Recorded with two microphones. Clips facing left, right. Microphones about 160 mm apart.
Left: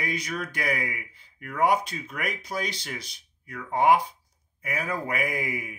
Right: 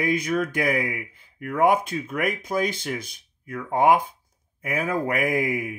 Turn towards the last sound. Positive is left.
turn(degrees=-50)  # may be behind; listen again after turning